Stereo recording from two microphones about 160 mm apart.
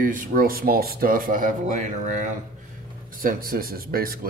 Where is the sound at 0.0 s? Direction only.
60° right (ahead or behind).